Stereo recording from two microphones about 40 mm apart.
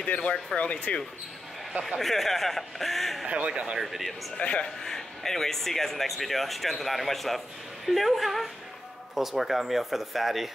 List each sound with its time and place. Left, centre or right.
0.6 s speech: left
1.7 s speech: right
2.0 s speech: centre
3.3 s speech: right
3.8 s speech: centre
4.4 s speech: left
4.8 s speech: centre